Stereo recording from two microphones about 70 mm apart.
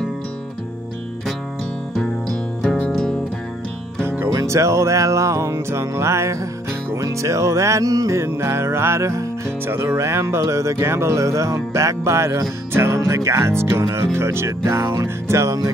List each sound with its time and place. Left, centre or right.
2.9 s music: centre
4.0 s music: right
4.3 s speech: right